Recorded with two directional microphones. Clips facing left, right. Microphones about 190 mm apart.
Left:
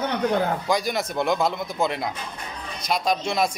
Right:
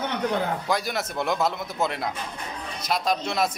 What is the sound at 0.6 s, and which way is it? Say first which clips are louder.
A man's voice: left 3 dB; 5° right (ahead or behind).